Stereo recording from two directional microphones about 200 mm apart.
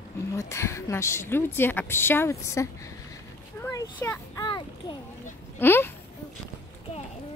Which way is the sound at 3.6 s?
15° left (ahead or behind).